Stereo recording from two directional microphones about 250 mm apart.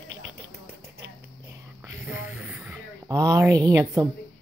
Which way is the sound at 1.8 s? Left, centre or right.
Centre.